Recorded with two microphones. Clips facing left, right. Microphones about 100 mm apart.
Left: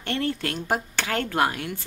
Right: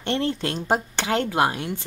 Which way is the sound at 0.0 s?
25° right (ahead or behind).